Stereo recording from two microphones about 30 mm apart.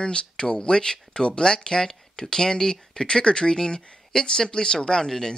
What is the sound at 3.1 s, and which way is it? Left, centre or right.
Speech, left.